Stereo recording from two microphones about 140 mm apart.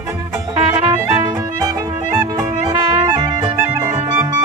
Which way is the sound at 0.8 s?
30° right (ahead or behind).